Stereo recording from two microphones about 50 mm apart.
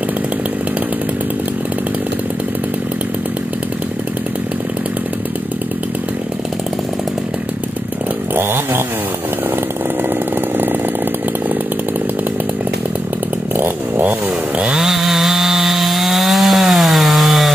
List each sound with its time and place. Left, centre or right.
13.6 s chainsaw: right
14.8 s wood: centre